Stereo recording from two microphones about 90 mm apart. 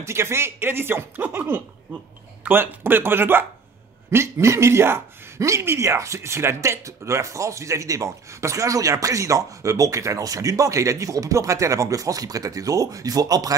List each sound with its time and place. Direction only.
0.0 s speech: 30° right (ahead or behind)